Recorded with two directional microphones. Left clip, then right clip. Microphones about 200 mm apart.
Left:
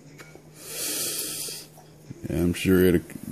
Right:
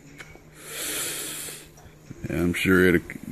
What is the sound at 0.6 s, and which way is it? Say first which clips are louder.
Snort: even; 20° left (ahead or behind).